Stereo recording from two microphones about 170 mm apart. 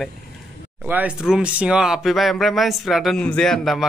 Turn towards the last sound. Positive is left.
turn(degrees=0)  # may be behind; listen again after turning